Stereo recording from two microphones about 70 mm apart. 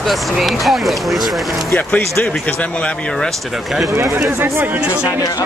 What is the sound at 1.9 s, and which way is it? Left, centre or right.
Speech, left.